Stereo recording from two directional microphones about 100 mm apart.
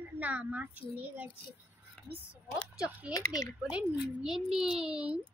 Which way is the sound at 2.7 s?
10° right (ahead or behind).